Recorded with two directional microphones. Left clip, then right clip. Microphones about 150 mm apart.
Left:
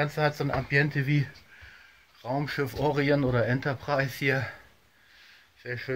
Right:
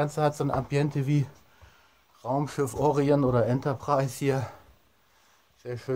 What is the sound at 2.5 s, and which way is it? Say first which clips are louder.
Speech: right 2 dB; 35° left (ahead or behind).